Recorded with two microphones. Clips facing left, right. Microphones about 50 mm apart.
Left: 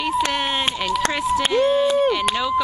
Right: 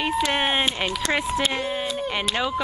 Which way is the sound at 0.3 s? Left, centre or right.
Right.